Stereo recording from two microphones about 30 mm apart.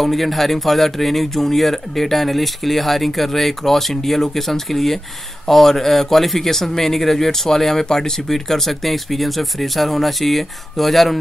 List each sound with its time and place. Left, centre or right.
0.0 s speech: centre
8.3 s speech: centre